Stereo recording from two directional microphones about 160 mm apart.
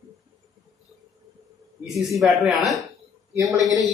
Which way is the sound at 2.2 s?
Centre (ahead or behind).